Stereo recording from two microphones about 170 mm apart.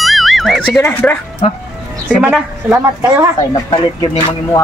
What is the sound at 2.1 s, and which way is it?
A woman's voice, 5° right (ahead or behind).